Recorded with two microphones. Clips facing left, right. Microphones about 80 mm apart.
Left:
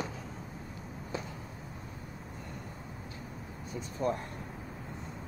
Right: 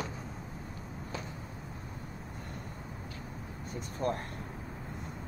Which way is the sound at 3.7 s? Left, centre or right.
Right.